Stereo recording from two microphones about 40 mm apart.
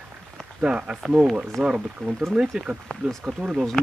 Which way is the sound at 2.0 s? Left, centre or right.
Left.